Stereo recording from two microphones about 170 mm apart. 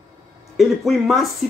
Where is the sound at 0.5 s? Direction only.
Centre (ahead or behind).